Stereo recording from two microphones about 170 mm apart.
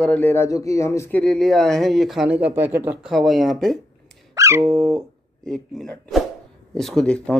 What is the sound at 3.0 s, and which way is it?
Speech, centre (ahead or behind).